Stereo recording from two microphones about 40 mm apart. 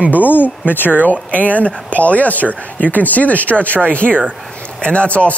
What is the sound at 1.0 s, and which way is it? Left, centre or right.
Speech, left.